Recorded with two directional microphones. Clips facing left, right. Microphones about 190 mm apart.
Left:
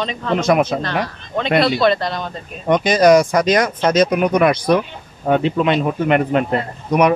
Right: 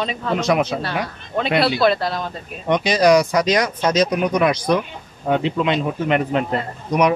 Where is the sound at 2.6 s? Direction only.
50° left (ahead or behind).